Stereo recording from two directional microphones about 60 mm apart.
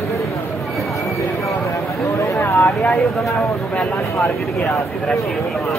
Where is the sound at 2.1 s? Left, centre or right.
Left.